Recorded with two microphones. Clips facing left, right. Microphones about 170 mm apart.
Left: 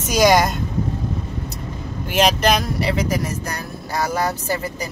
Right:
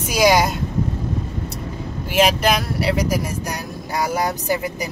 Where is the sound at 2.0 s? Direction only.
5° right (ahead or behind).